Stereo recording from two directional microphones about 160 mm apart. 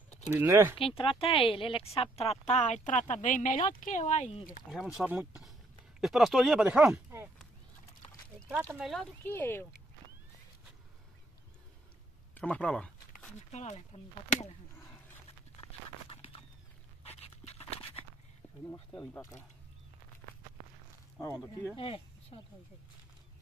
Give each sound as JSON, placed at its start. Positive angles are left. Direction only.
{"t": 0.3, "sound": "speech", "side_deg": -15}
{"t": 0.7, "sound": "speech", "side_deg": 35}
{"t": 4.6, "sound": "speech", "side_deg": -5}
{"t": 6.9, "sound": "speech", "side_deg": -15}
{"t": 8.7, "sound": "speech", "side_deg": 0}
{"t": 9.2, "sound": "speech", "side_deg": 15}
{"t": 12.4, "sound": "a sound", "side_deg": 5}
{"t": 13.5, "sound": "speech", "side_deg": 45}
{"t": 17.2, "sound": "dog", "side_deg": 40}
{"t": 18.7, "sound": "speech", "side_deg": 15}
{"t": 21.7, "sound": "speech", "side_deg": 35}